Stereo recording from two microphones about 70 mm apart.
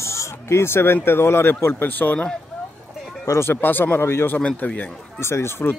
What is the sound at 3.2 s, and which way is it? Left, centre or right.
Speech, left.